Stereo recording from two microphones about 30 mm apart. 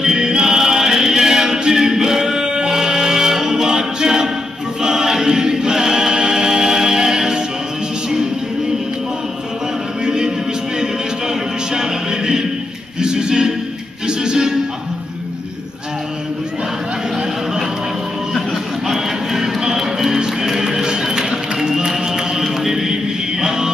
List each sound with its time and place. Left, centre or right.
0.0 s choir: centre
1.7 s music: centre
4.8 s choir: centre
10.0 s music: right
18.3 s music: centre
21.1 s music: right
23.4 s music: right